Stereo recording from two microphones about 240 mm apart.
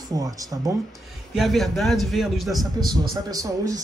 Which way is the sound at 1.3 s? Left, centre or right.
Centre.